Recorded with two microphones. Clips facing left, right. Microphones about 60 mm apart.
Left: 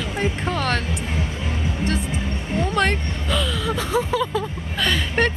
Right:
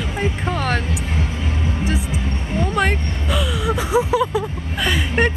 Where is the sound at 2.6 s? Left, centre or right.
Centre.